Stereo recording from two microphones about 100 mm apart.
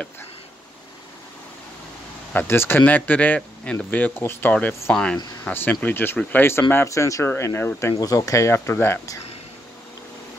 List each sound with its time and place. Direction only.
2.3 s speech: 25° left (ahead or behind); by 5.5 s 10° left (ahead or behind)
5.5 s speech: 20° left (ahead or behind)